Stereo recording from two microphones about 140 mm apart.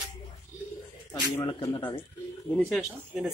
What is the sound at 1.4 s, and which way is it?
Speech, 30° left (ahead or behind).